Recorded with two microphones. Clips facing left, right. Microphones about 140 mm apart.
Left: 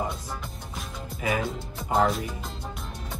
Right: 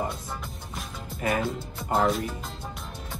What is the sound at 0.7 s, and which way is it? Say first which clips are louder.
Music: even; centre (ahead or behind).